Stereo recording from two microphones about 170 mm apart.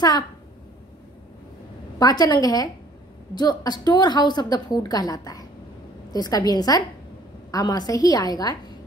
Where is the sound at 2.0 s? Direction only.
20° left (ahead or behind).